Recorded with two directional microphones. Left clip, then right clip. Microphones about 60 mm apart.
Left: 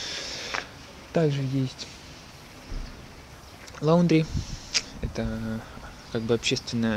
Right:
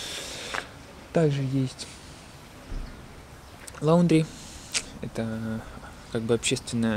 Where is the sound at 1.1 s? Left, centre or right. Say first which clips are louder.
Right 1 dB; right.